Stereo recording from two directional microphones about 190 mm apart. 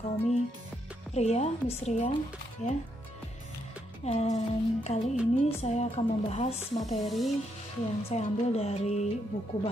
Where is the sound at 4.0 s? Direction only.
35° left (ahead or behind).